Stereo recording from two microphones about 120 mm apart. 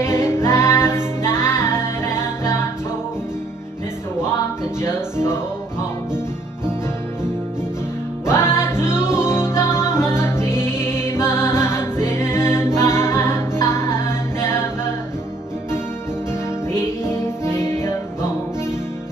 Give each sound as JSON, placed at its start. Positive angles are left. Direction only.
{"t": 0.0, "sound": "music", "side_deg": 20}
{"t": 4.8, "sound": "music", "side_deg": 20}
{"t": 8.3, "sound": "music", "side_deg": 20}
{"t": 16.7, "sound": "music", "side_deg": 20}